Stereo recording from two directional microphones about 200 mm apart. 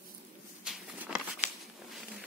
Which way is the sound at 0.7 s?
10° right (ahead or behind).